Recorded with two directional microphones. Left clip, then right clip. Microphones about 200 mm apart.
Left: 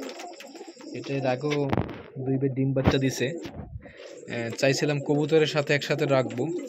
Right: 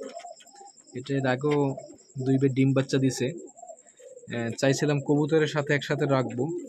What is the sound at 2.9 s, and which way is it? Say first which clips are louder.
Speech: left 1 dB; 5° right (ahead or behind).